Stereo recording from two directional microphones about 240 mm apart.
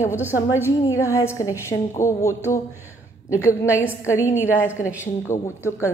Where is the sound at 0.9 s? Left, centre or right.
Centre.